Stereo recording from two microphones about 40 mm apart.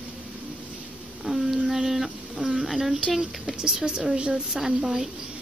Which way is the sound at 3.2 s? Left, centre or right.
Centre.